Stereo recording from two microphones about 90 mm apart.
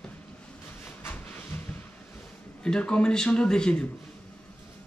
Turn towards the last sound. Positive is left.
turn(degrees=10)  # may be behind; listen again after turning